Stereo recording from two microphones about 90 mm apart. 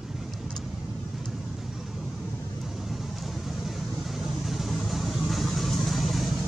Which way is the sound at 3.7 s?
Centre (ahead or behind).